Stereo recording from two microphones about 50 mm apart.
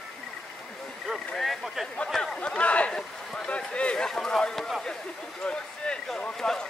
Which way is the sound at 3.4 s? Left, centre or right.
Left.